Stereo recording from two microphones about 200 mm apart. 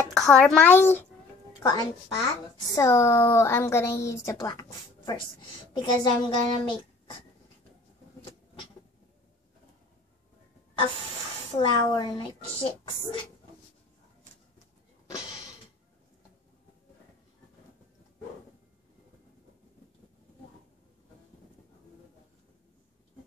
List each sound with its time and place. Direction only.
0.1 s a child's voice: 5° left (ahead or behind); by 6.8 s 25° left (ahead or behind)
11.6 s a woman's voice: 20° left (ahead or behind)